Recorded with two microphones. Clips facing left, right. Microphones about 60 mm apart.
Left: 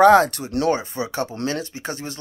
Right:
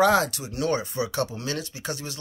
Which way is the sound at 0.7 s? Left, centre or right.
Left.